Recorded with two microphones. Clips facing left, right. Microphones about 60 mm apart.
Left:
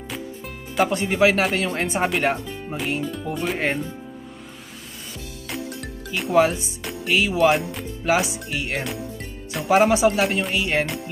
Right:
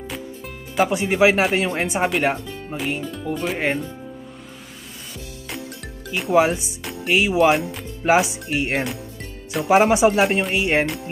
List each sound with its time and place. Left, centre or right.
0.7 s speech: centre
1.8 s speech: centre
2.4 s music: centre
2.7 s speech: centre
5.5 s music: centre
6.3 s speech: centre
6.8 s speech: centre
8.0 s speech: right
9.5 s speech: centre
9.8 s speech: centre